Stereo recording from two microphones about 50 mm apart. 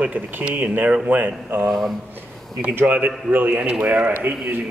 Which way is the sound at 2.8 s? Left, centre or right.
Right.